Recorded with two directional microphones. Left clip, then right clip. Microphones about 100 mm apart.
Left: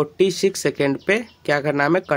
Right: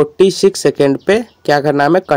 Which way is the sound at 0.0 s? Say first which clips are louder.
Right 8 dB; 45° right (ahead or behind).